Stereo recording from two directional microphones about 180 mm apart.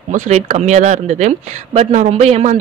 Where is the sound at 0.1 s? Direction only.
40° right (ahead or behind).